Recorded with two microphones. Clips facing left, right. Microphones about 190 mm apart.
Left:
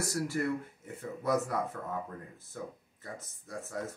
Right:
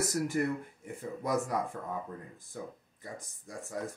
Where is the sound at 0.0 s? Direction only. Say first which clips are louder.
Right 2 dB; 20° right (ahead or behind).